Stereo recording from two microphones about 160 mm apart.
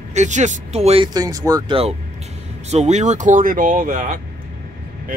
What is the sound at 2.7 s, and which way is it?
Speech, 45° right (ahead or behind).